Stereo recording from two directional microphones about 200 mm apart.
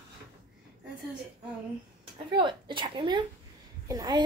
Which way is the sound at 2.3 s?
25° right (ahead or behind).